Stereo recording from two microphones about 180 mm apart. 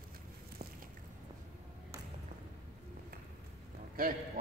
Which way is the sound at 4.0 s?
55° right (ahead or behind).